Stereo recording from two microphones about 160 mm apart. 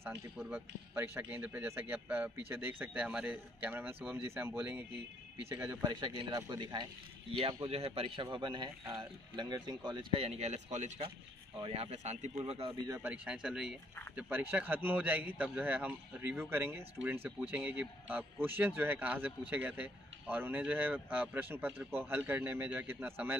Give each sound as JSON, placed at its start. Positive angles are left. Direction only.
{"t": 0.5, "sound": "a man's voice", "side_deg": -15}
{"t": 5.9, "sound": "speech", "side_deg": -30}
{"t": 13.0, "sound": "a man's voice", "side_deg": -10}